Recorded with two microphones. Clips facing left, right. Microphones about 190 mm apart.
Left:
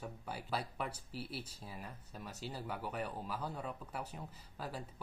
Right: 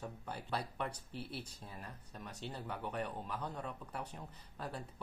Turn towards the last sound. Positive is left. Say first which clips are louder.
# even
turn(degrees=5)  # may be behind; listen again after turning